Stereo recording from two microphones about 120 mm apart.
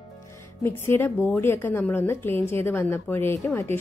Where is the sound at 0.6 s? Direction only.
20° left (ahead or behind).